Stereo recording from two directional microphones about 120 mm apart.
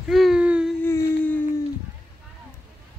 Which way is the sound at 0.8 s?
15° left (ahead or behind).